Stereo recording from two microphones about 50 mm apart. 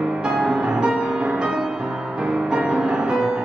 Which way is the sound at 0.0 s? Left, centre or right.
Right.